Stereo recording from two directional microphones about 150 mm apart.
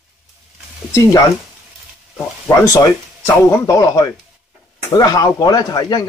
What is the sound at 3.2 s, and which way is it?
Speech, 20° left (ahead or behind).